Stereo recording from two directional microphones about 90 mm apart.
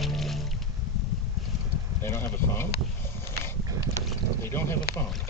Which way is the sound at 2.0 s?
25° left (ahead or behind).